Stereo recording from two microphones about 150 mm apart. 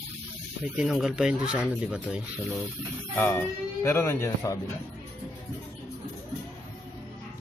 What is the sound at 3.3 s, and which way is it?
Speech, 15° left (ahead or behind).